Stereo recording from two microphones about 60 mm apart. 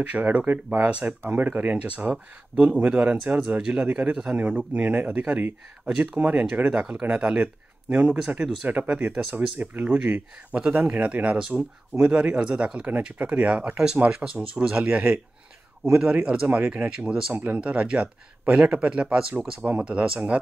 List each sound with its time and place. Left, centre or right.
0.0 s speech: right
6.1 s speech: right
17.3 s speech: right